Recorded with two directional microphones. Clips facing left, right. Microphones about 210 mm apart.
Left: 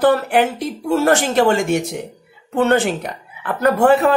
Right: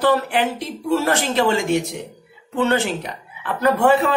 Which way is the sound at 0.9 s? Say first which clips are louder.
Left 3 dB; 50° left (ahead or behind).